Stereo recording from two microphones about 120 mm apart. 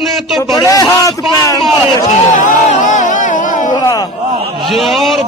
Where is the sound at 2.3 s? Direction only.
90° left.